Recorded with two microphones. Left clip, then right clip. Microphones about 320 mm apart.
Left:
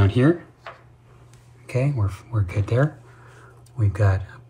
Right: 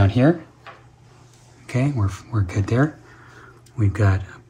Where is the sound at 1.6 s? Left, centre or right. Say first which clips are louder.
Right 1 dB; right.